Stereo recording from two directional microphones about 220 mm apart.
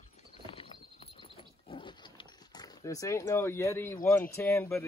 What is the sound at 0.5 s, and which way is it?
Horse, 25° left (ahead or behind).